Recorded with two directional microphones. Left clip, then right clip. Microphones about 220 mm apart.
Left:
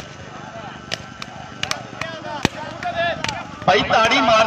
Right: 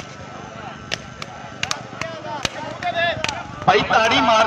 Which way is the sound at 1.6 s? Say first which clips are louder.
Even; 5° right (ahead or behind).